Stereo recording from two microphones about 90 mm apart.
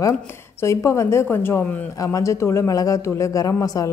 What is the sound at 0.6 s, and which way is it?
Speech, 35° left (ahead or behind).